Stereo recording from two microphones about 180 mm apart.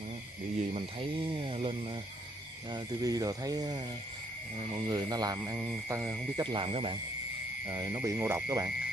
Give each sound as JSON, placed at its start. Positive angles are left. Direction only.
{"t": 0.7, "sound": "speech", "side_deg": -30}
{"t": 2.7, "sound": "speech", "side_deg": -20}
{"t": 4.8, "sound": "speech", "side_deg": -20}
{"t": 7.6, "sound": "speech", "side_deg": -15}